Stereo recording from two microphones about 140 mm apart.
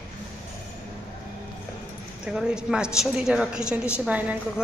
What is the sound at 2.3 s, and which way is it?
A woman's voice, 5° right (ahead or behind).